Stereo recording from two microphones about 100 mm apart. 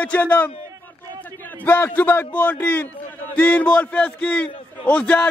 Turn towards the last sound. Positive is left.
turn(degrees=15)  # may be behind; listen again after turning